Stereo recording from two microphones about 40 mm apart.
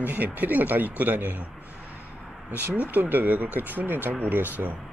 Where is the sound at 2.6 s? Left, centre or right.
Right.